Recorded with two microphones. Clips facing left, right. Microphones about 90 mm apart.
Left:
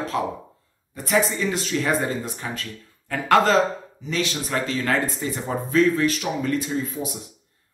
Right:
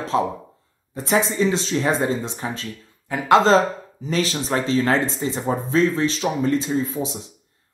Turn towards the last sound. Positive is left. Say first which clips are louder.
# right 4 dB
turn(degrees=-30)  # may be behind; listen again after turning